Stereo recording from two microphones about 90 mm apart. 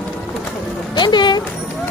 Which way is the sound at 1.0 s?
60° left (ahead or behind).